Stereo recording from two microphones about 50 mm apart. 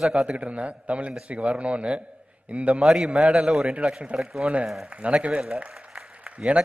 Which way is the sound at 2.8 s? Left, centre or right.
Centre.